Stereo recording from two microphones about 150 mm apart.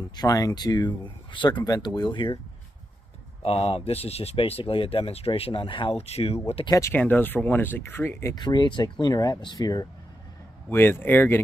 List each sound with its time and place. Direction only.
0.0 s speech: 25° left (ahead or behind)
3.4 s speech: 40° left (ahead or behind)
6.7 s speech: 15° left (ahead or behind)
10.7 s speech: 15° left (ahead or behind)